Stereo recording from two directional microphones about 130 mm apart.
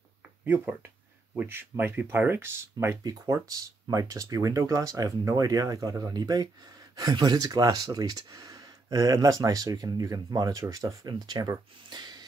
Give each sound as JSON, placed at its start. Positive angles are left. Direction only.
{"t": 1.3, "sound": "speech", "side_deg": -15}